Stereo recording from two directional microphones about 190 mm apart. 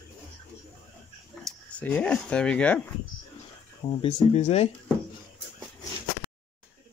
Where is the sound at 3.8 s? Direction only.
25° left (ahead or behind).